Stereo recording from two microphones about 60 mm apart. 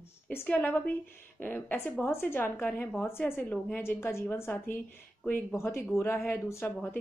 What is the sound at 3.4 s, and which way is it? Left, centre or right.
Speech, left.